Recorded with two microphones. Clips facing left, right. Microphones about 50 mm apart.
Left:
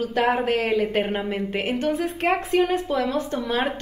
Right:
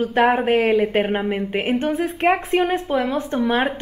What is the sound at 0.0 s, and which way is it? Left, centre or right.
A woman's voice, right.